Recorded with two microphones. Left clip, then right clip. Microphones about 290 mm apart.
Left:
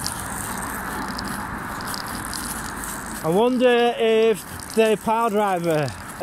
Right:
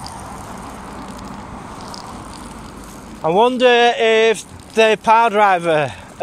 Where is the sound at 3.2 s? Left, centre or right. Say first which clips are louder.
Right 5 dB; right.